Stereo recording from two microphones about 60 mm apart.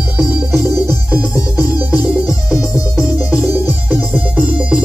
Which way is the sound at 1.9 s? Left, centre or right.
Centre.